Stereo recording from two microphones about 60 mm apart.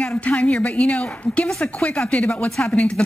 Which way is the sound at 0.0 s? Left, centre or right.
Left.